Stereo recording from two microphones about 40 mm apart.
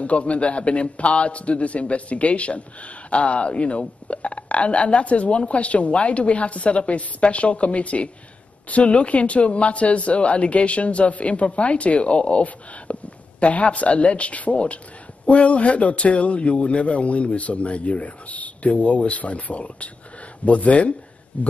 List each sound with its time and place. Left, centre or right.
0.0 s a man's voice: left